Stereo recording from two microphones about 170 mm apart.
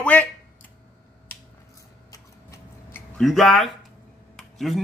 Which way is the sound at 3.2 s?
Centre (ahead or behind).